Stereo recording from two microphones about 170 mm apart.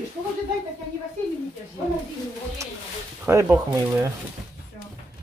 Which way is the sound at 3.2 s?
10° right (ahead or behind).